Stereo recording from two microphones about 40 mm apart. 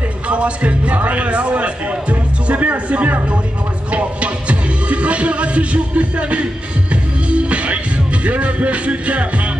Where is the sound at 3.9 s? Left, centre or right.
Right.